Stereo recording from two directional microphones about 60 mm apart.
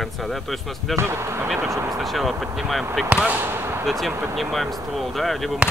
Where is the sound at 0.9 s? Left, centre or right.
Right.